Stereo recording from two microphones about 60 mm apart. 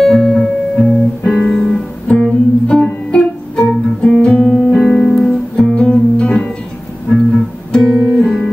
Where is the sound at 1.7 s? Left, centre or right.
Centre.